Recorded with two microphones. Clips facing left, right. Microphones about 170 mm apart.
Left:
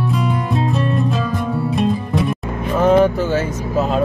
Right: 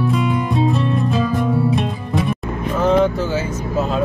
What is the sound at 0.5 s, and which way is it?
Music, centre (ahead or behind).